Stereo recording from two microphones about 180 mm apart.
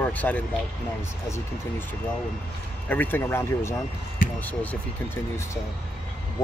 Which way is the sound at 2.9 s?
10° left (ahead or behind).